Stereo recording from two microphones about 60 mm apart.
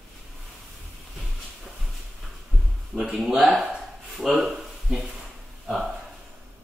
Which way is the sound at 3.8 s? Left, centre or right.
Centre.